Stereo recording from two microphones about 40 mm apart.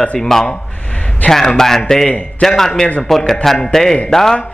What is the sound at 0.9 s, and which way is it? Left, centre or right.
Speech, left.